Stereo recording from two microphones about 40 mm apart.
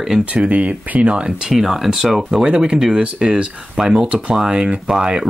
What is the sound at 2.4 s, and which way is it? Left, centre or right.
Speech, right.